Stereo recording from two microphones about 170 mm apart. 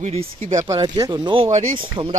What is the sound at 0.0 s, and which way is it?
Speech, 40° right (ahead or behind).